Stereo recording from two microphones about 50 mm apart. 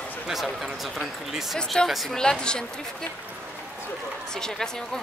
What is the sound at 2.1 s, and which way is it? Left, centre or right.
Speech, centre.